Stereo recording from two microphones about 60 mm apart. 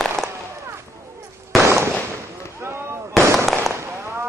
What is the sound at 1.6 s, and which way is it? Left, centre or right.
Fireworks, right.